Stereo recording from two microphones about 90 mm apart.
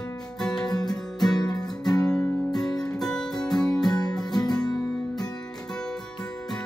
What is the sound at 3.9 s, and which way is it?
Music, 50° left (ahead or behind).